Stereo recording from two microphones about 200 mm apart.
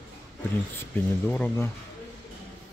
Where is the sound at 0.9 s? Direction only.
10° left (ahead or behind).